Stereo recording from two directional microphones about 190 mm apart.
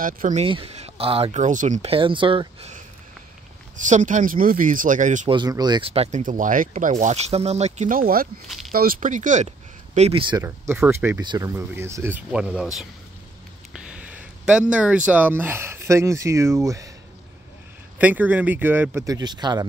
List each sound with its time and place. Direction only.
0.0 s speech: 45° right (ahead or behind)
0.4 s speech: 30° right (ahead or behind)
3.7 s speech: 40° right (ahead or behind)
5.3 s speech: 20° right (ahead or behind)
6.2 s speech: 45° right (ahead or behind)
10.3 s speech: 15° right (ahead or behind)
13.7 s a sound: 5° right (ahead or behind)
14.7 s speech: 5° right (ahead or behind)
17.9 s speech: 10° right (ahead or behind)